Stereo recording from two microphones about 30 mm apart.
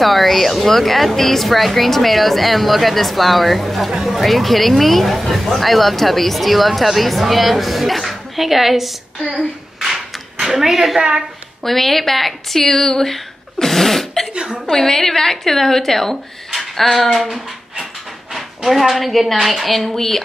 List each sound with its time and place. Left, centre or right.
0.0 s speech: centre
10.4 s a woman's voice: centre
11.0 s a woman's voice: right
11.6 s speech: centre
14.3 s a woman's voice: right
14.7 s speech: centre
18.3 s a woman's voice: centre